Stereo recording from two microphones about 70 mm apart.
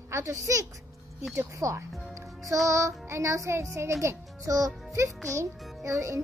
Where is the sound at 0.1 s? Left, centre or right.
Right.